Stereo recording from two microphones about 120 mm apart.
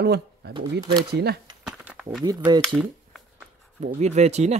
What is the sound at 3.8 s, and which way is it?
Speech, 70° right (ahead or behind).